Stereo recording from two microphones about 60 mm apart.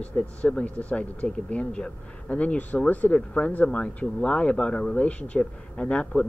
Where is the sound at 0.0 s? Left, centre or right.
Centre.